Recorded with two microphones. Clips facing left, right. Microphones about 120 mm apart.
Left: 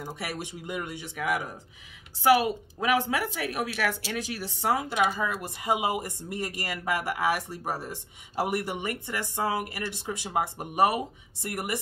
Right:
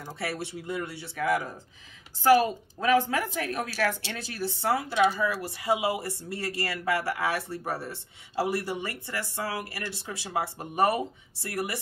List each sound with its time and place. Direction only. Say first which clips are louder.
0.0 s speech: right 1 dB; 15° left (ahead or behind)